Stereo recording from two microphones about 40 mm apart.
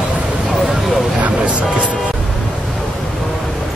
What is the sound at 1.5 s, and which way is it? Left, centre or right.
Speech, right.